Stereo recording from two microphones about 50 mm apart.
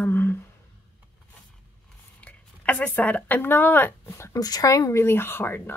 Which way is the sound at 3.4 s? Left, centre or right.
Left.